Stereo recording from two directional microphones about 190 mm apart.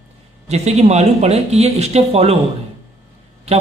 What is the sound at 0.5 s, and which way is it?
A man's voice, 35° right (ahead or behind).